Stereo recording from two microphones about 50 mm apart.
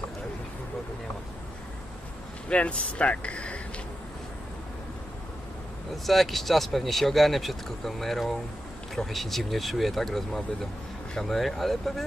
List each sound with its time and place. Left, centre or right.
2.5 s speech: left
6.0 s speech: centre